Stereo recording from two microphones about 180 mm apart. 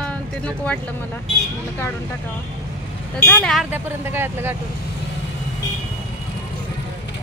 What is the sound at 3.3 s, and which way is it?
Speech, 5° left (ahead or behind).